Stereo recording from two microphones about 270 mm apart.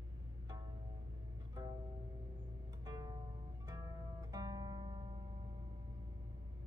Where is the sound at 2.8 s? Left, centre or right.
Centre.